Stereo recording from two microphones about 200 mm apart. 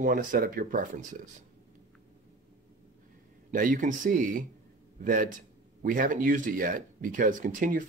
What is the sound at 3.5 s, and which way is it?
Speech, 40° right (ahead or behind).